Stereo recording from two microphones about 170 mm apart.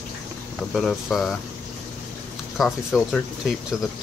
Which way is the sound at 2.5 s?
Centre (ahead or behind).